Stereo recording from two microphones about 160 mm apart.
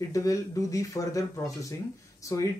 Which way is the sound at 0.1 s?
20° left (ahead or behind).